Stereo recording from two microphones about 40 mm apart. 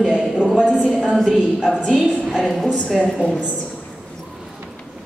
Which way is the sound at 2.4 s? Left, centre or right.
Centre.